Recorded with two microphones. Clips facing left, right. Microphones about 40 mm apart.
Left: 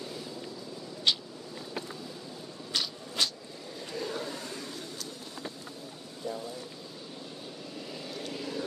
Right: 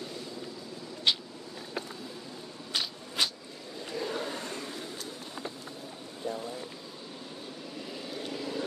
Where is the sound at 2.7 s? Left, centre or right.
Centre.